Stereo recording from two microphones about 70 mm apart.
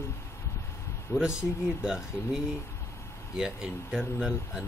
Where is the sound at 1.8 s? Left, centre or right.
Centre.